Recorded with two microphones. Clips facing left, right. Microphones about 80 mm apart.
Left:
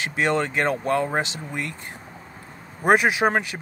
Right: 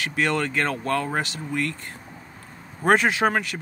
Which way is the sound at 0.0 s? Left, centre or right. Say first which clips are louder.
Left 1 dB; left.